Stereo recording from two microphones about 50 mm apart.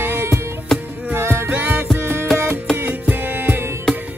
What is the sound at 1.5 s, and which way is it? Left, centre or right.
Music, right.